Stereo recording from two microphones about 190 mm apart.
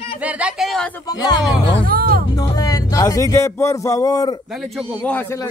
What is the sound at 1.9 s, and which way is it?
Speech, 50° right (ahead or behind).